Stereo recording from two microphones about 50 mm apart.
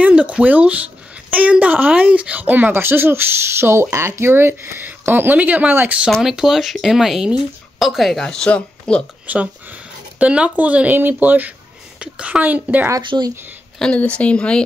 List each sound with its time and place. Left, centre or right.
0.0 s speech: right
2.8 s speech: right
6.2 s speech: centre
8.2 s speech: centre
9.2 s a woman's voice: right
13.1 s speech: right
13.9 s speech: left